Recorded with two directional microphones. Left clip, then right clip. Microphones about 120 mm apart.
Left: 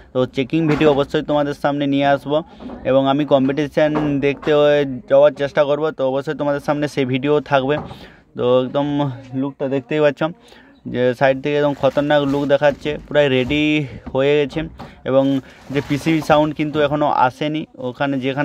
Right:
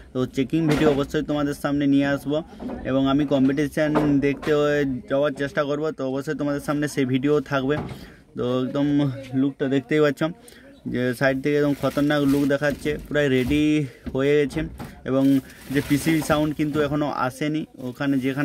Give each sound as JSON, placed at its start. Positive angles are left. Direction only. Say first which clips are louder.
{"t": 0.1, "sound": "speech", "louder": "left 6 dB", "side_deg": 15}
{"t": 15.7, "sound": "speech", "louder": "left 3 dB", "side_deg": 25}